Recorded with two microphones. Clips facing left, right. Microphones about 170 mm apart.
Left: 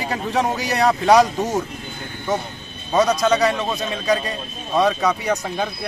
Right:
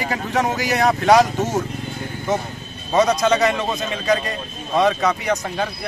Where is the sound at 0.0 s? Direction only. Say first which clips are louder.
Even; centre (ahead or behind).